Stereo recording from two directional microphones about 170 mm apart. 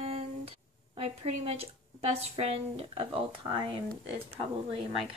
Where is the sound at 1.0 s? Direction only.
35° right (ahead or behind).